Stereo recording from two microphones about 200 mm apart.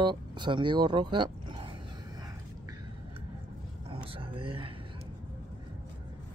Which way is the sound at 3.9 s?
25° right (ahead or behind).